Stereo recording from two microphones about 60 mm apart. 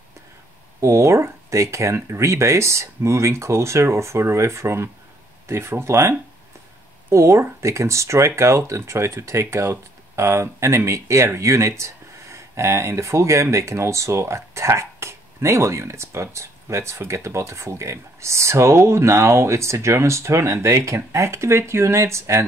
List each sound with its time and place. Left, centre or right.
0.7 s speech: right